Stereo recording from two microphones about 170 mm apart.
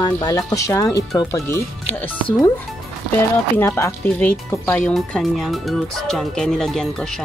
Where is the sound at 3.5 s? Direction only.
15° left (ahead or behind).